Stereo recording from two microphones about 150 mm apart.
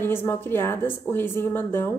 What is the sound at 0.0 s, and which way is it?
Speech, 15° left (ahead or behind).